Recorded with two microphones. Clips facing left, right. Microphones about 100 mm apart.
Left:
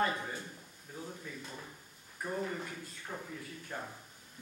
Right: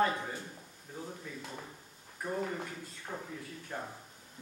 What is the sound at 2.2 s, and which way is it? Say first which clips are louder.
Speech: right 1 dB; 10° right (ahead or behind).